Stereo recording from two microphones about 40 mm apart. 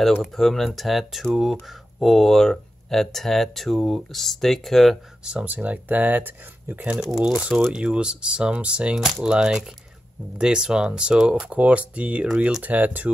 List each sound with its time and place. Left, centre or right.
0.0 s speech: centre
5.4 s speech: right
7.0 s speech: centre
7.7 s speech: right
8.9 s speech: centre
11.4 s speech: right
12.6 s speech: right